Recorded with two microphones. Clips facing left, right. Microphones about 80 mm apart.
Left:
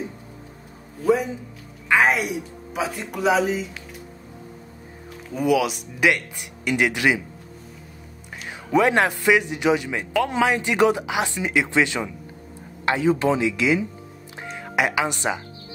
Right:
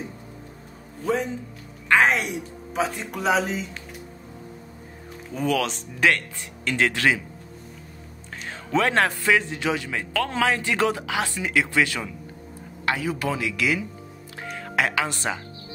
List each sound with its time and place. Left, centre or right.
1.0 s a woman's voice: centre
5.3 s speech: centre
8.6 s a man's voice: centre
14.4 s music: centre
14.8 s speech: centre